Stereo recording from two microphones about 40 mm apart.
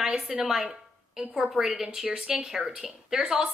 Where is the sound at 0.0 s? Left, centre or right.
Centre.